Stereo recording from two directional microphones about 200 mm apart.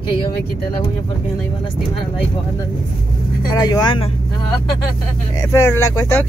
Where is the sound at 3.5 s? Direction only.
20° left (ahead or behind).